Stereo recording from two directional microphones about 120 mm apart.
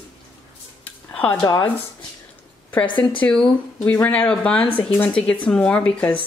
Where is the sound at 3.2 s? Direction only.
5° left (ahead or behind).